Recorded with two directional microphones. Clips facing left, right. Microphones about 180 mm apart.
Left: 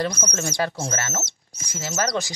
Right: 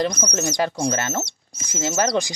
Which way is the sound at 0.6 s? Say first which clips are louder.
Right 4 dB; 15° right (ahead or behind).